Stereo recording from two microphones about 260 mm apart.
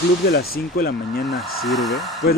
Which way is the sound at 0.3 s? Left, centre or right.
Left.